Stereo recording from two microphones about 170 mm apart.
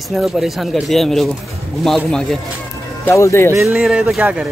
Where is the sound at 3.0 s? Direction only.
15° left (ahead or behind).